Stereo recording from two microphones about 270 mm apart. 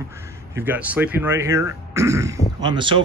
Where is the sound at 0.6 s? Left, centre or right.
Centre.